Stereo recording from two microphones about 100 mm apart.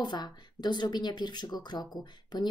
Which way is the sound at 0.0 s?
45° left (ahead or behind).